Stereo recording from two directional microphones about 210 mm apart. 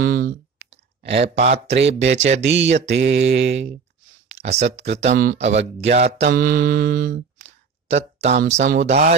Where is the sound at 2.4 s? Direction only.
60° right (ahead or behind).